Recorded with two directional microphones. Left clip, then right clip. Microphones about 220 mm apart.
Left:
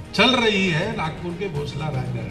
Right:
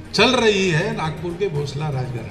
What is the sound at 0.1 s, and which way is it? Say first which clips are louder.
A man's voice: right 2 dB; 45° right (ahead or behind).